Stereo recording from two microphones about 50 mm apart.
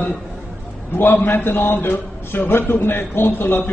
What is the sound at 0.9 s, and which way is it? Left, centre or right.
A man's voice, left.